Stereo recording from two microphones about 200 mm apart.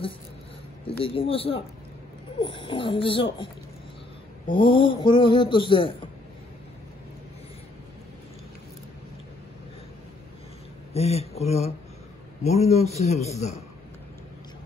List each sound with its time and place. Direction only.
0.8 s speech: 25° left (ahead or behind)
4.6 s speech: 25° left (ahead or behind)
10.9 s a man's voice: 30° left (ahead or behind)